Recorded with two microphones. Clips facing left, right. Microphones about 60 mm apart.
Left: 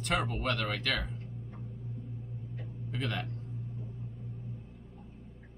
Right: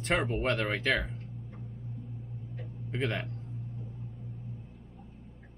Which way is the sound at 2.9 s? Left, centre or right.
Right.